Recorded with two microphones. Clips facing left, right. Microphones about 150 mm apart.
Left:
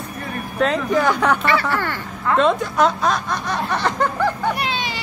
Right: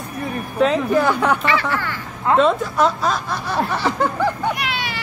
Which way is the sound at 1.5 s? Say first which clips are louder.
Left 1 dB; 55° left (ahead or behind).